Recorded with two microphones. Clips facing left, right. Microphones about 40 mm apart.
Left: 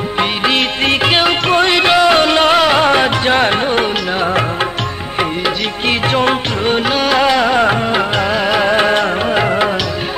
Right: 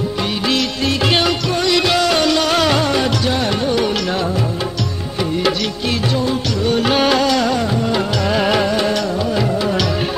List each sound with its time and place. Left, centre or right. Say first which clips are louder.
0.2 s music: left 5 dB; left
1.5 s music: left 6 dB; left
2.8 s music: left 5 dB; left
6.9 s music: even; centre
7.2 s music: left 3 dB; left
8.3 s music: left 1 dB; centre
8.6 s music: left 5 dB; left